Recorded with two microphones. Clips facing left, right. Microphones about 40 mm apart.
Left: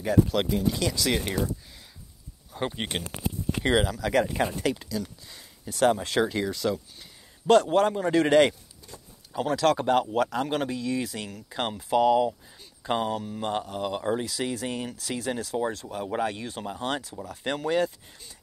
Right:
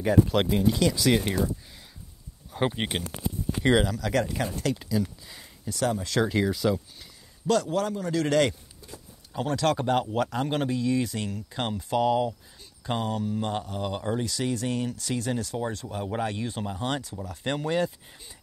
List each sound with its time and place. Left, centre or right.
0.0 s speech: centre
2.5 s speech: centre
3.6 s speech: centre
4.7 s speech: centre
5.7 s a man's voice: left
6.2 s speech: centre
7.4 s a man's voice: left
8.8 s speech: centre